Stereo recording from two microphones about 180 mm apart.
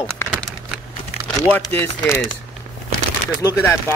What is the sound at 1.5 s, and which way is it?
Speech, 10° left (ahead or behind).